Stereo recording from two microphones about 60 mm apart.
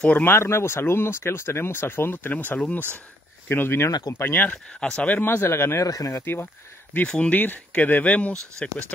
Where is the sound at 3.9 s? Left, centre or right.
Left.